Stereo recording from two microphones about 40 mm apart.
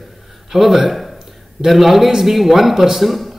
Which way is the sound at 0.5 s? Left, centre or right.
Centre.